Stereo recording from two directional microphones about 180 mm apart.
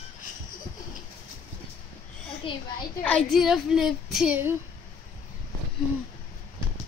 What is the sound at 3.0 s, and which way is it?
Female singing, 5° left (ahead or behind).